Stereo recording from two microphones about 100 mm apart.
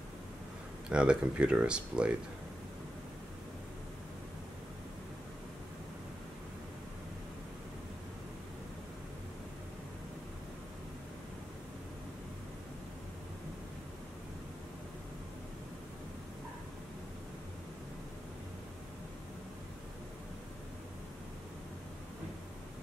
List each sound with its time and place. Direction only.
0.8 s speech: 10° right (ahead or behind)